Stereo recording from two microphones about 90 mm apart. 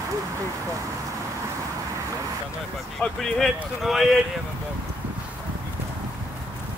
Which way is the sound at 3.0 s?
5° left (ahead or behind).